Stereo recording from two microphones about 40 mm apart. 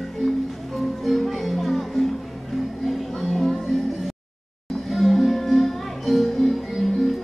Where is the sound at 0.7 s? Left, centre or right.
Centre.